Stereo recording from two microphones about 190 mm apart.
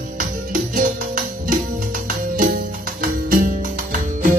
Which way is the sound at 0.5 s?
45° right (ahead or behind).